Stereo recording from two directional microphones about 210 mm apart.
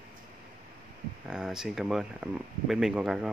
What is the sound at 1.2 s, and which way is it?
Speech, 5° right (ahead or behind).